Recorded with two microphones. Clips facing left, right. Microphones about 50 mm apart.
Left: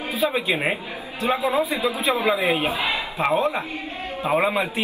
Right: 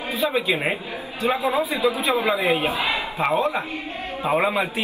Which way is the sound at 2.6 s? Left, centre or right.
Right.